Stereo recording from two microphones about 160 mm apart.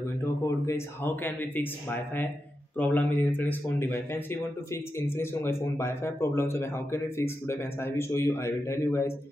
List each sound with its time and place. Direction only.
0.2 s speech: 15° left (ahead or behind)